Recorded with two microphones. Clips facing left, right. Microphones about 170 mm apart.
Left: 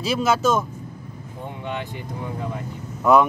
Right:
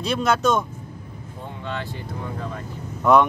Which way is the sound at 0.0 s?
5° left (ahead or behind).